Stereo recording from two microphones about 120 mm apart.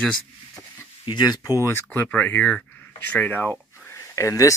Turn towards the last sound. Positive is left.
turn(degrees=25)  # may be behind; listen again after turning